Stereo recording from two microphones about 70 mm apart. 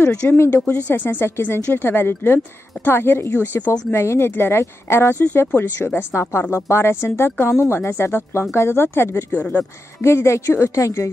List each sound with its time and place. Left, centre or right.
0.1 s speech: centre; by 5.2 s left
5.2 s speech: left
9.4 s speech: centre
10.0 s speech: left